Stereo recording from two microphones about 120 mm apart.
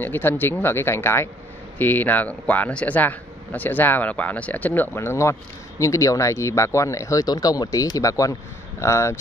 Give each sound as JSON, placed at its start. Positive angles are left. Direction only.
{"t": 0.0, "sound": "speech", "side_deg": 15}